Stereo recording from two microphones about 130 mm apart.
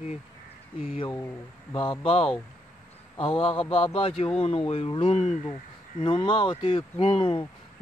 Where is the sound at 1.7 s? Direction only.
45° left (ahead or behind); by 6.0 s 60° left (ahead or behind).